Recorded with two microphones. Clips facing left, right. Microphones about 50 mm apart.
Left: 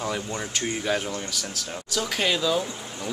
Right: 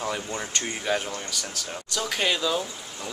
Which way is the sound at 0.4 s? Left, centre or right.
Centre.